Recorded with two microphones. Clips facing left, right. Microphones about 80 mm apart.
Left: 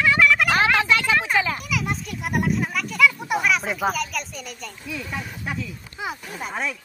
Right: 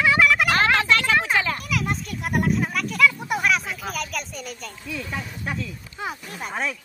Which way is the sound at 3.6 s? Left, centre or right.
Left.